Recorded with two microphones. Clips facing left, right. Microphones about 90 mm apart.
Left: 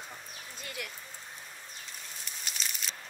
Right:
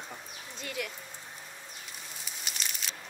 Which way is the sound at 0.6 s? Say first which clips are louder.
Right 5 dB; centre (ahead or behind).